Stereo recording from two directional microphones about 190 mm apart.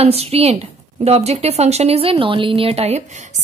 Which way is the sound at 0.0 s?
30° right (ahead or behind).